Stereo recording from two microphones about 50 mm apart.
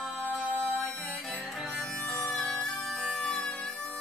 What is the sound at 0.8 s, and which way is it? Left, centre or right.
Music, left.